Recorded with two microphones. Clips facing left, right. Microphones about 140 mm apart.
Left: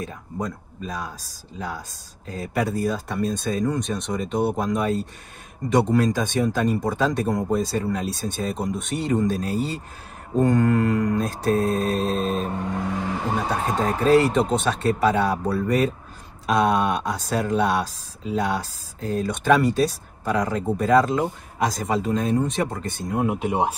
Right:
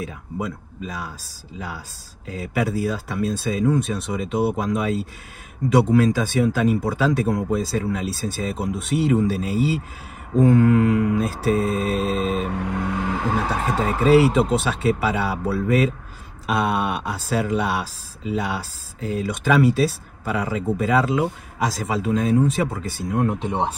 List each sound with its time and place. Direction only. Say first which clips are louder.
0.0 s speech: right 1 dB; 5° right (ahead or behind)
12.4 s speech: right 1 dB; 65° right (ahead or behind)
13.5 s speech: even; centre (ahead or behind)